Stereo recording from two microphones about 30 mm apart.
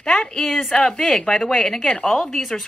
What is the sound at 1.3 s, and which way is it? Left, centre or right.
Speech, centre.